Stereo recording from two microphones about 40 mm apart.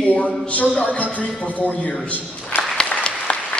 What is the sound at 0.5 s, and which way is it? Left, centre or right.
Speech, left.